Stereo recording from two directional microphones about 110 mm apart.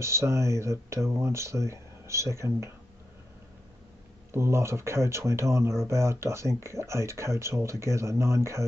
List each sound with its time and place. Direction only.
0.0 s speech: 25° right (ahead or behind)
4.3 s speech: 25° right (ahead or behind)